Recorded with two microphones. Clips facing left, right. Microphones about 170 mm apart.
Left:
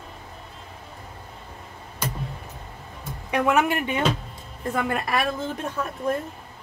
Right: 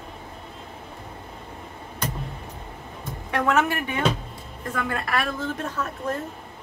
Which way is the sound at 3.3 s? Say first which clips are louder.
Left 1 dB; 15° left (ahead or behind).